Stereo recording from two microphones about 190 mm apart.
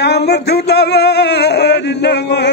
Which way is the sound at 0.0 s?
60° left (ahead or behind).